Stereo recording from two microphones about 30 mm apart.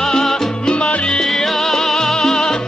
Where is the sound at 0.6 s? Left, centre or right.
Left.